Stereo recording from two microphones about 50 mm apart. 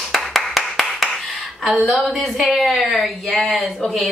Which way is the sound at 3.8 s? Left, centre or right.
Centre.